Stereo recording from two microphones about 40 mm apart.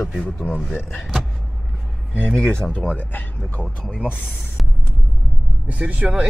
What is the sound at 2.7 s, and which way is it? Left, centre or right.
Speech, left.